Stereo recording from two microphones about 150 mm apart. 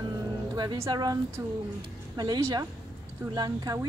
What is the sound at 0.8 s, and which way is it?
Speech, 25° right (ahead or behind).